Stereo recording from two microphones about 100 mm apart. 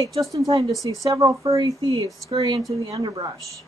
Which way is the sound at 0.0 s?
35° right (ahead or behind).